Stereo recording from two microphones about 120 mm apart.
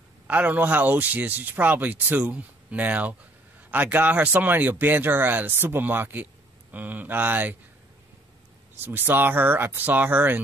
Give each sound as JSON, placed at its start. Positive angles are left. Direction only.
{"t": 0.3, "sound": "speech", "side_deg": -15}
{"t": 8.8, "sound": "speech", "side_deg": -15}